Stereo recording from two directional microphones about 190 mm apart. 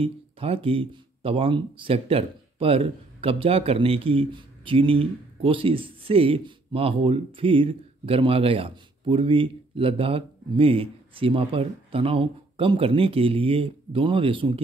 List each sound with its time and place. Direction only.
0.0 s speech: 30° right (ahead or behind)